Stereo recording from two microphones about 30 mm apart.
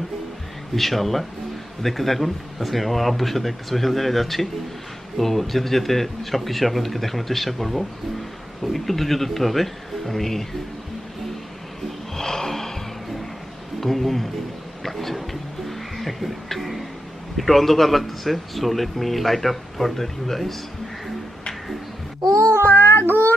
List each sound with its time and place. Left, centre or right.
0.7 s speech: centre
12.2 s gasp: centre
13.7 s speech: centre
14.8 s a sound: centre
15.1 s music: centre
17.4 s speech: centre
22.7 s music: left